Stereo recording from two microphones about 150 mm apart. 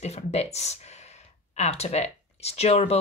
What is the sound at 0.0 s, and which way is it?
Speech, 45° left (ahead or behind).